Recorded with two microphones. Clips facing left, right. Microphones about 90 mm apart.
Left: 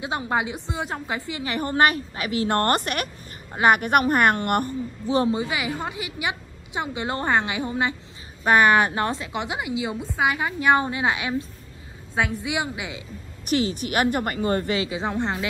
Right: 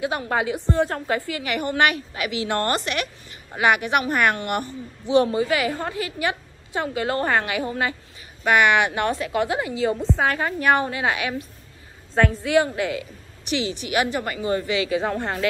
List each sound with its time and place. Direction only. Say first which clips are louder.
0.2 s a woman's voice: right 2 dB; 20° left (ahead or behind); by 5.3 s 35° left (ahead or behind)
5.3 s a woman's voice: right 4 dB; 20° left (ahead or behind)
8.5 s a woman's voice: left 1 dB; 35° left (ahead or behind)
12.2 s a woman's voice: right 6 dB; 15° left (ahead or behind)
13.5 s a woman's voice: left 2 dB; 45° left (ahead or behind)
14.9 s a woman's voice: right 2 dB; 20° left (ahead or behind)